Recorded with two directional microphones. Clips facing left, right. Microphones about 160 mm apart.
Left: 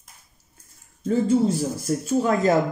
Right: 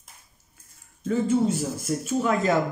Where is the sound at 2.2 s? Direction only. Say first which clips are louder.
Left 3 dB; 35° left (ahead or behind).